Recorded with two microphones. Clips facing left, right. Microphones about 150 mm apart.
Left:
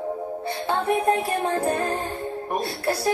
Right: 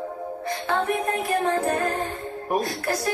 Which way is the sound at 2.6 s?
30° left (ahead or behind).